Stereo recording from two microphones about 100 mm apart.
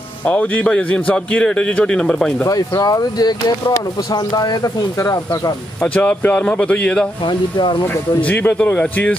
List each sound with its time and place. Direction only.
0.2 s a man's voice: 15° left (ahead or behind)
2.4 s speech: 35° left (ahead or behind)
5.8 s a man's voice: 15° left (ahead or behind)
7.2 s speech: 50° left (ahead or behind)
8.3 s a man's voice: 15° left (ahead or behind)